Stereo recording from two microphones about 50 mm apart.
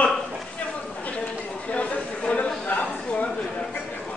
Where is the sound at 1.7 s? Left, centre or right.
Left.